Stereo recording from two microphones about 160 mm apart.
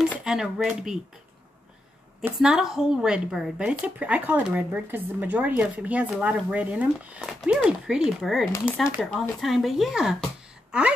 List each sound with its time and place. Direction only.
0.2 s a woman's voice: 5° right (ahead or behind)
2.3 s a woman's voice: 5° right (ahead or behind)
8.5 s speech: 15° left (ahead or behind)
9.0 s a woman's voice: centre (ahead or behind)